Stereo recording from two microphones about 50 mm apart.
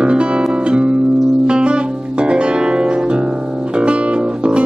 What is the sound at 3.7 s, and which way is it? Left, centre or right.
Guitar, right.